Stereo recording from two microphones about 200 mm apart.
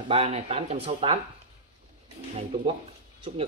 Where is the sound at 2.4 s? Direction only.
25° right (ahead or behind).